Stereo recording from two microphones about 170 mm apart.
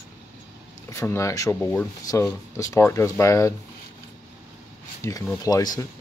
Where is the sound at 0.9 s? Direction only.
15° left (ahead or behind).